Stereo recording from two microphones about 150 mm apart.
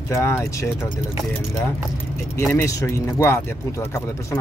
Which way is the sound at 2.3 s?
20° left (ahead or behind).